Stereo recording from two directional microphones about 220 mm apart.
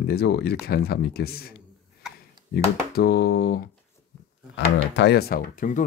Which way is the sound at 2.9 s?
45° left (ahead or behind).